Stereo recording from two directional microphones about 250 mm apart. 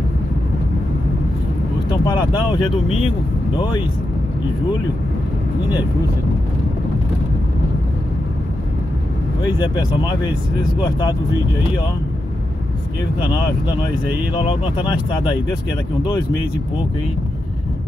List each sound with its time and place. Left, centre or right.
1.9 s speech: centre
9.4 s speech: centre
13.8 s speech: centre